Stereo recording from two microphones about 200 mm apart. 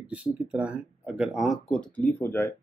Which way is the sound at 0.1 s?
5° right (ahead or behind).